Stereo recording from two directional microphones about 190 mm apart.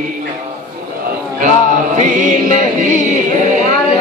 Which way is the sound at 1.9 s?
40° right (ahead or behind).